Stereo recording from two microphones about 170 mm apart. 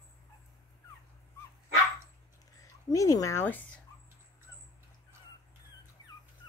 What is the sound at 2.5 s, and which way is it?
Speech, 20° left (ahead or behind).